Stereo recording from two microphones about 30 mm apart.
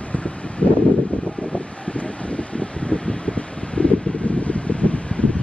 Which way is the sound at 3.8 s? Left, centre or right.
Left.